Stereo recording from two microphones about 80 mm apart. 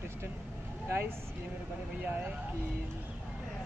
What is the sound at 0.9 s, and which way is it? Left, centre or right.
Speech, right.